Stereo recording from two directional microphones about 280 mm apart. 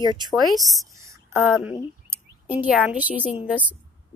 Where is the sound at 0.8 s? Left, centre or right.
Centre.